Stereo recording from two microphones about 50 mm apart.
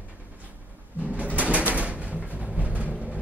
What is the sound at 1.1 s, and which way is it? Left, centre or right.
Bird, right.